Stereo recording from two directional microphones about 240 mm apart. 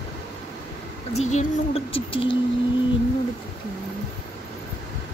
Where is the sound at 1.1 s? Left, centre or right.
Left.